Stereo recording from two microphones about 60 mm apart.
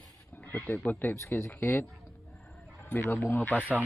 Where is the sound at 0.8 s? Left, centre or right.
Left.